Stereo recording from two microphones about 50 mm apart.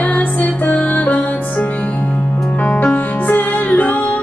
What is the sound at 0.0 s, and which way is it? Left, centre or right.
Music, left.